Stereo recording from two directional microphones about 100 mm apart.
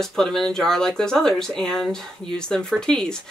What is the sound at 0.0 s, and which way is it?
Speech, 5° left (ahead or behind).